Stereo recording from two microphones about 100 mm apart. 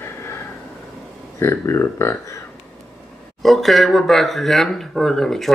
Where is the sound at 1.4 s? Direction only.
25° left (ahead or behind).